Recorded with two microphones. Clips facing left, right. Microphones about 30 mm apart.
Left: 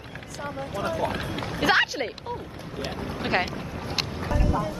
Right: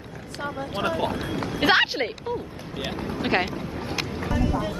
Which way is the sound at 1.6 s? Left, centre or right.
Right.